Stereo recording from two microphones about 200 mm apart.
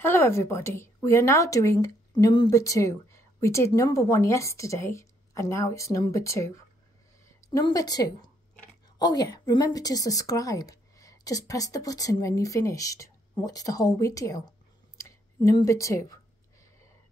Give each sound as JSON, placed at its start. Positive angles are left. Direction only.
{"t": 0.0, "sound": "a woman's voice", "side_deg": 10}